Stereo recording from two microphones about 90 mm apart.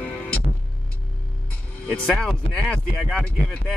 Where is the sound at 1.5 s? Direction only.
15° left (ahead or behind).